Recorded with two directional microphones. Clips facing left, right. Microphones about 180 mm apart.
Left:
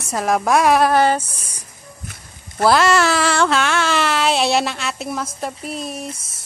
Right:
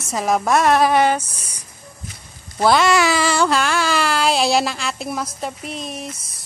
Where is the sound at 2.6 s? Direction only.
Centre (ahead or behind).